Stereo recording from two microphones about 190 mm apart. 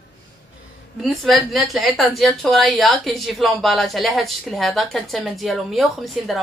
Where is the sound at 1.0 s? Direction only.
Centre (ahead or behind).